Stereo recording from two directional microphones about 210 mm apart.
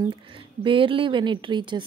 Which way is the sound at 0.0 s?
25° right (ahead or behind).